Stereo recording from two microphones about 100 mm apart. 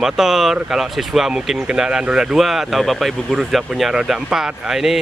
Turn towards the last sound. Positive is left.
turn(degrees=-5)  # may be behind; listen again after turning